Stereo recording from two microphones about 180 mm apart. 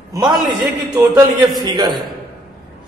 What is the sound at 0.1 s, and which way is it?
Speech, 20° right (ahead or behind).